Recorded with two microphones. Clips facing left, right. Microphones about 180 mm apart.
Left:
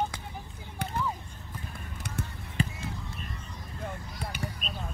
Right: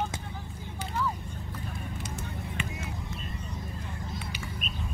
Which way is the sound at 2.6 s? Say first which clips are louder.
Left 8 dB; 35° left (ahead or behind).